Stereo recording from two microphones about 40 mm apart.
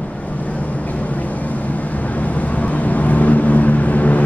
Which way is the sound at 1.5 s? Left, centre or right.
Left.